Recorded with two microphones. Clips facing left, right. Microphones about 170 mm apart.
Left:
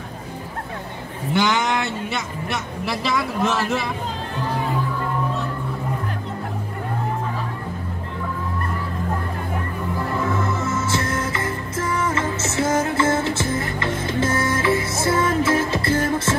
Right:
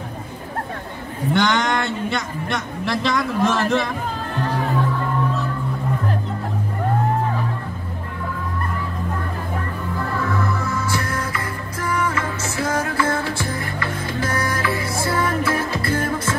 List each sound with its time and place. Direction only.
1.3 s speech: 5° left (ahead or behind)
10.1 s music: 20° left (ahead or behind)